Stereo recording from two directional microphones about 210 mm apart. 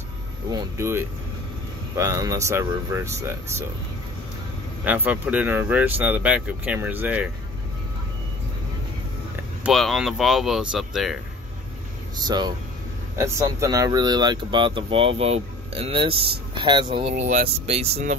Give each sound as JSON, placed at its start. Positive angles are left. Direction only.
{"t": 0.5, "sound": "speech", "side_deg": -15}
{"t": 4.8, "sound": "speech", "side_deg": -10}
{"t": 9.6, "sound": "speech", "side_deg": 0}
{"t": 12.3, "sound": "speech", "side_deg": -20}
{"t": 17.1, "sound": "speech", "side_deg": -35}